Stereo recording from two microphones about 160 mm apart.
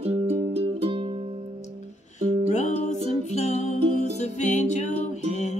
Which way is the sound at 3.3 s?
45° left (ahead or behind).